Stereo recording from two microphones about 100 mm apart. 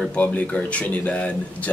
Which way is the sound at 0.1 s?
15° left (ahead or behind).